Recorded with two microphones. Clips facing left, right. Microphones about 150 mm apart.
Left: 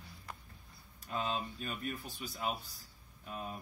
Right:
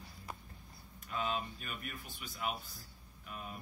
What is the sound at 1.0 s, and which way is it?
Speech, 35° left (ahead or behind).